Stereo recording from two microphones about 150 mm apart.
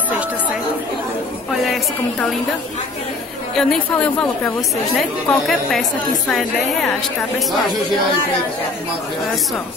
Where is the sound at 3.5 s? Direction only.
5° left (ahead or behind).